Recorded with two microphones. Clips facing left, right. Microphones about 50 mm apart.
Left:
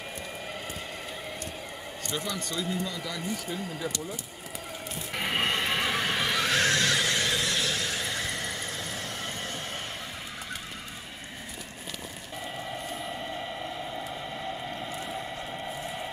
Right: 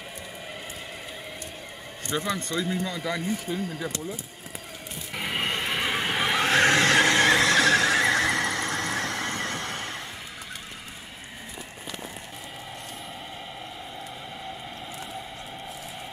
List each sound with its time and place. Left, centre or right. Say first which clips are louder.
2.0 s speech: right 5 dB; right
2.8 s speech: right 4 dB; centre
5.1 s neigh: left 1 dB; centre; by 6.4 s right
6.4 s neigh: right 7 dB; right